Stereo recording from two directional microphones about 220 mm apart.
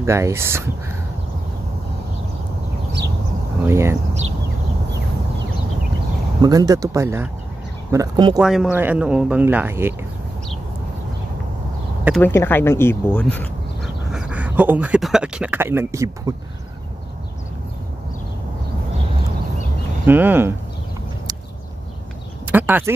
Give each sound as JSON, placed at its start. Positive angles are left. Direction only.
{"t": 0.0, "sound": "speech", "side_deg": -10}
{"t": 3.6, "sound": "speech", "side_deg": -10}
{"t": 6.4, "sound": "speech", "side_deg": -15}
{"t": 8.4, "sound": "speech", "side_deg": -5}
{"t": 12.2, "sound": "speech", "side_deg": 10}
{"t": 14.1, "sound": "a man's voice", "side_deg": -5}
{"t": 20.1, "sound": "speech", "side_deg": -10}
{"t": 22.5, "sound": "a sound", "side_deg": -10}